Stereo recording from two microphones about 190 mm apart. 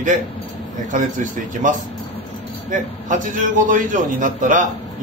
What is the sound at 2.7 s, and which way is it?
A man's voice, 45° right (ahead or behind).